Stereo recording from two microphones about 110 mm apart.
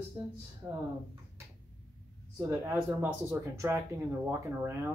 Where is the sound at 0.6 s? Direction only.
25° right (ahead or behind).